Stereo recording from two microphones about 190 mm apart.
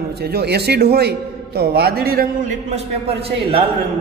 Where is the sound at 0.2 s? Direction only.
55° right (ahead or behind).